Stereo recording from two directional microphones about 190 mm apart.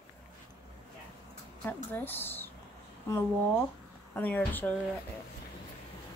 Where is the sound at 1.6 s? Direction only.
10° left (ahead or behind).